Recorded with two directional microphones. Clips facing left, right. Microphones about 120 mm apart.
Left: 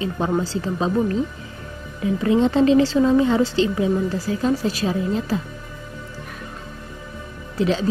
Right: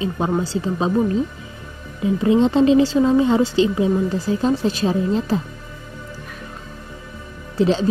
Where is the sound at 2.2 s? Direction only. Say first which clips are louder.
Right 2 dB; 20° right (ahead or behind).